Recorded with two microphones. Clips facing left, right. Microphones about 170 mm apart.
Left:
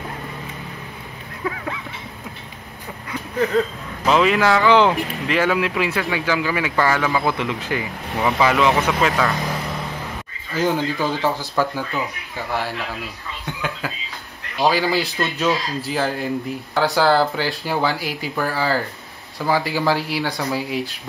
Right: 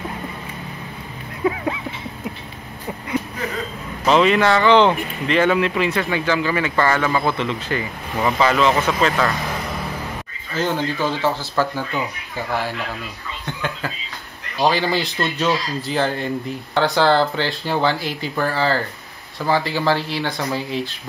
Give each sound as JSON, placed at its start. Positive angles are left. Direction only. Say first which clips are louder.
{"t": 1.4, "sound": "a sound", "louder": "right 6 dB", "side_deg": -20}
{"t": 4.0, "sound": "speech", "louder": "right 1 dB", "side_deg": 5}
{"t": 10.5, "sound": "speech", "louder": "left 1 dB", "side_deg": 10}
{"t": 11.9, "sound": "speech", "louder": "right 1 dB", "side_deg": 0}